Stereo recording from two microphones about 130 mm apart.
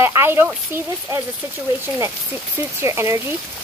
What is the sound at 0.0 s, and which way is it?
Speech, 20° right (ahead or behind).